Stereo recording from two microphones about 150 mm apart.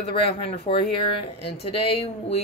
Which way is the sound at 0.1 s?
40° left (ahead or behind).